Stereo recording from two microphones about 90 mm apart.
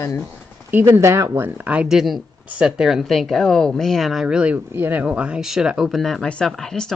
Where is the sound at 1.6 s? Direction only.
15° right (ahead or behind).